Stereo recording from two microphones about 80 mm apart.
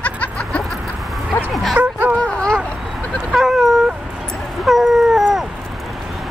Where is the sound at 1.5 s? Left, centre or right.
Centre.